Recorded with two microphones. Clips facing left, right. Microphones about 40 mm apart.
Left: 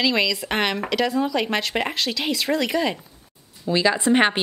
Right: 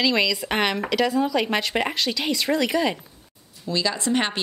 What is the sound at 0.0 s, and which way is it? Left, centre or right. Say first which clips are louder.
Speech: even; centre.